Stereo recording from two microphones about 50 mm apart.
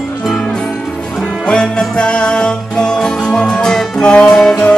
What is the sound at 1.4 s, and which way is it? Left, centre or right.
Music, centre.